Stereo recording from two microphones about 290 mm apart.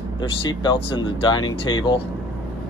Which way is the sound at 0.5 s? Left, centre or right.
Centre.